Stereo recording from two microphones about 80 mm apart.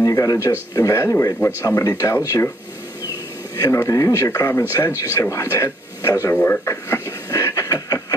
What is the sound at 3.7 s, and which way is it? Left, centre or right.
Speech, left.